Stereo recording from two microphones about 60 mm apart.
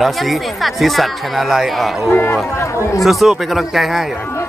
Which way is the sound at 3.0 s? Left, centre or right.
Centre.